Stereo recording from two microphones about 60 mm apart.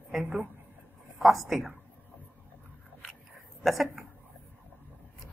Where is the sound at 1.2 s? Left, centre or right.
Centre.